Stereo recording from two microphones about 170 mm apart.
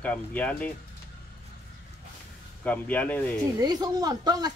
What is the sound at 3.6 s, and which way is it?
Speech, 20° right (ahead or behind).